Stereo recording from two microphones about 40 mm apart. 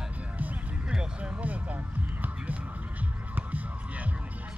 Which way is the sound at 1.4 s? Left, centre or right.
Right.